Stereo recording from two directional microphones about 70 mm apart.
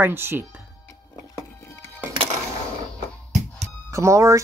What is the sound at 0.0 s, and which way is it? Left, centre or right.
Speech, right.